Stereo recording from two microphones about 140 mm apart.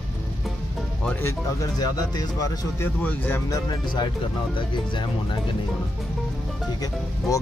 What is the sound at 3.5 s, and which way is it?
Speech, 25° left (ahead or behind).